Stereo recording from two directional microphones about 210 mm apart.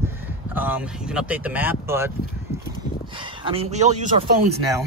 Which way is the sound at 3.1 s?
25° right (ahead or behind).